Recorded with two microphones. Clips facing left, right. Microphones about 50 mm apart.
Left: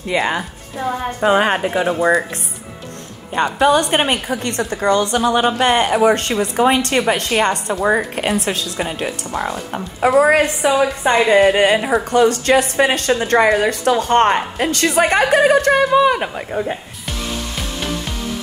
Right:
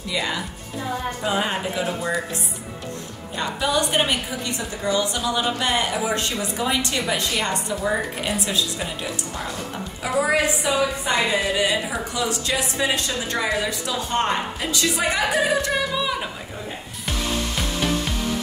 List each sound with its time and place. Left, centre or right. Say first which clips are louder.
0.1 s a woman's voice: left 7 dB; left
3.3 s speech: left 9 dB; left
10.2 s speech: left 7 dB; left
10.7 s a woman's voice: left 9 dB; left
11.5 s speech: left 8 dB; left